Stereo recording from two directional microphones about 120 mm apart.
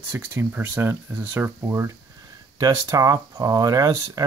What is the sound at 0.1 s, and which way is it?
Speech, 20° right (ahead or behind).